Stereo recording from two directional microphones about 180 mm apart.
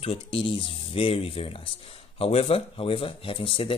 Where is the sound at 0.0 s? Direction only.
30° left (ahead or behind).